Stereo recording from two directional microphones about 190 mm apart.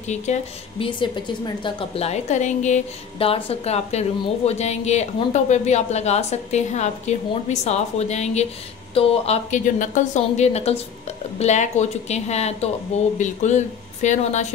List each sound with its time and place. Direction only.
0.1 s speech: 35° left (ahead or behind)